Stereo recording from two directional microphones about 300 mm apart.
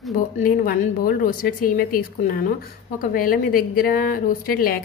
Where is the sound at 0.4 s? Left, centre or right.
Left.